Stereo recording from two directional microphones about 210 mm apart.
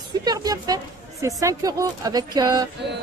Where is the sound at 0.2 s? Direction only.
20° right (ahead or behind).